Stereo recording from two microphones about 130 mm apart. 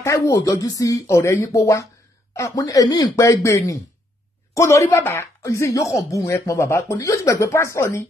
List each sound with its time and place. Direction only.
0.0 s speech: 25° left (ahead or behind)